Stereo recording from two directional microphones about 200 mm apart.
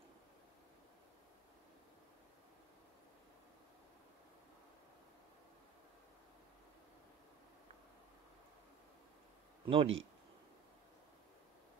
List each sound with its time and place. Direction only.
9.7 s a man's voice: 25° right (ahead or behind)